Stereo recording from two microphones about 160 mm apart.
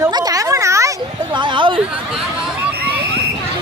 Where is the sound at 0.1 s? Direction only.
20° right (ahead or behind).